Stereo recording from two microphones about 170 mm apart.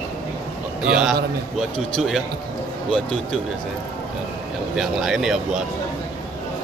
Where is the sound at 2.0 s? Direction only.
Centre (ahead or behind).